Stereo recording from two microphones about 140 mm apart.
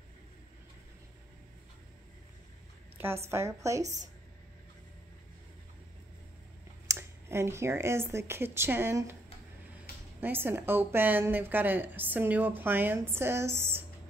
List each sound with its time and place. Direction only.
3.3 s a woman's voice: 20° right (ahead or behind)
3.8 s a woman's voice: 60° right (ahead or behind)
6.9 s speech: 20° right (ahead or behind)
10.2 s a woman's voice: 15° right (ahead or behind)